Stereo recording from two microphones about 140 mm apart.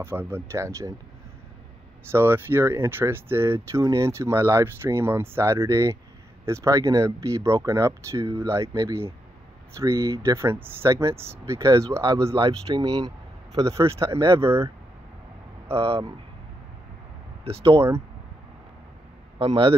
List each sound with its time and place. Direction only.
0.0 s speech: 15° right (ahead or behind)
2.0 s speech: 15° right (ahead or behind)
12.4 s speech: 35° right (ahead or behind); by 14.7 s 20° right (ahead or behind)
15.7 s speech: 40° right (ahead or behind)
17.7 s speech: 20° right (ahead or behind)
19.3 s speech: 40° right (ahead or behind)